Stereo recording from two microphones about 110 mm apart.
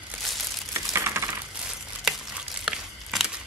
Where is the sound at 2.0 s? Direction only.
5° right (ahead or behind).